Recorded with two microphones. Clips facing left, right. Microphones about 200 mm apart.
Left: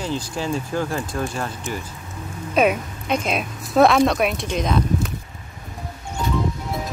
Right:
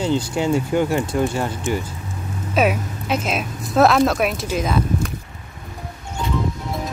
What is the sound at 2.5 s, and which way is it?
Speech, 5° right (ahead or behind).